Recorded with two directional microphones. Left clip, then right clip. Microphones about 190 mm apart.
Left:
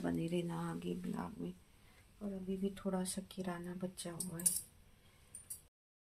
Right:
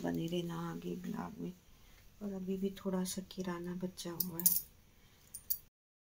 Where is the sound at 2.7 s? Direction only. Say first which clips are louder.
Right 1 dB; centre (ahead or behind).